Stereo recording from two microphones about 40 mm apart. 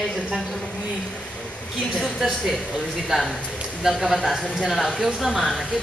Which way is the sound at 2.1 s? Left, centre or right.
Centre.